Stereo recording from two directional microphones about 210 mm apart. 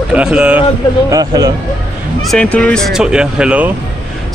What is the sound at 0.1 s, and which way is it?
Speech, 5° right (ahead or behind).